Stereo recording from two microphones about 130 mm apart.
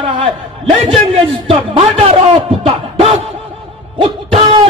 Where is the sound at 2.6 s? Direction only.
50° right (ahead or behind).